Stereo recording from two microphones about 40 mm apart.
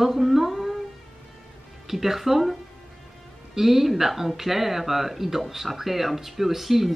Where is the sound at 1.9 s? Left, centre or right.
Centre.